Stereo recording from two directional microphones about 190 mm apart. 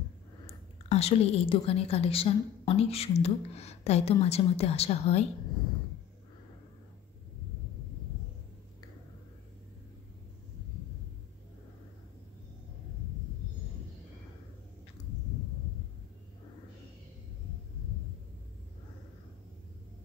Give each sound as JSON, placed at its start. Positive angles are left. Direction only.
{"t": 0.5, "sound": "a woman's voice", "side_deg": 35}